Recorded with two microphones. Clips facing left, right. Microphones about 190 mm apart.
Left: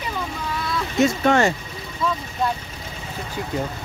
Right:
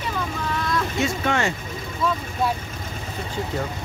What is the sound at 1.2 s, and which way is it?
Speech, 40° left (ahead or behind).